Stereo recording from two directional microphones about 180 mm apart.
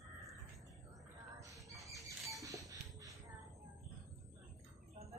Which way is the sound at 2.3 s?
20° right (ahead or behind).